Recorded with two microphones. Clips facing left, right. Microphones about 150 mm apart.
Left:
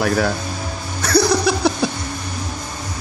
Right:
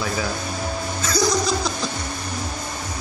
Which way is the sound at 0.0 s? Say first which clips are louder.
Left 7 dB; 65° left (ahead or behind).